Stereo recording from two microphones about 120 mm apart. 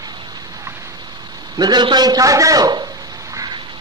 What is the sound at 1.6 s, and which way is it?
A man's voice, 35° right (ahead or behind).